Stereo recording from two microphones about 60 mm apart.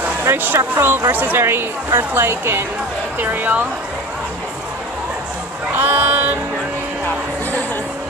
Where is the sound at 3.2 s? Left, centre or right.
Right.